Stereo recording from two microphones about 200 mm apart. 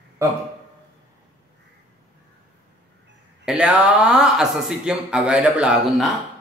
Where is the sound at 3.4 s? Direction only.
5° right (ahead or behind).